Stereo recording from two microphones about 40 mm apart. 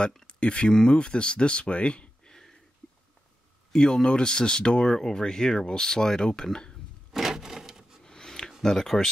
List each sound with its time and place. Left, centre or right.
0.3 s speech: left
3.7 s speech: centre
4.8 s speech: centre
7.1 s wood: centre
8.0 s a sound: centre
8.6 s speech: centre